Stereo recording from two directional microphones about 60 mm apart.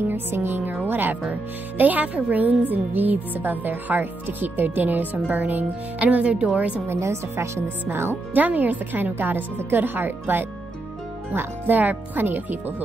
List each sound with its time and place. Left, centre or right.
0.1 s speech: right
6.9 s speech: right
7.9 s speech: right
8.4 s speech: right